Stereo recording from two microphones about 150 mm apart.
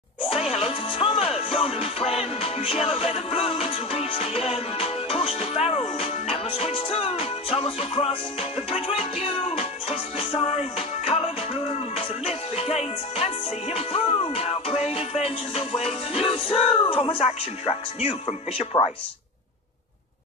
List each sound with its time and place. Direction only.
0.3 s music: 45° left (ahead or behind)